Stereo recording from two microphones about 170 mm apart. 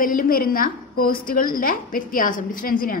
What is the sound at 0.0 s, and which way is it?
A woman's voice, 55° left (ahead or behind).